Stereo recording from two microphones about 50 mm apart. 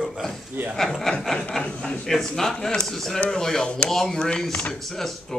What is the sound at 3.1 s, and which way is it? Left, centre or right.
Speech, centre.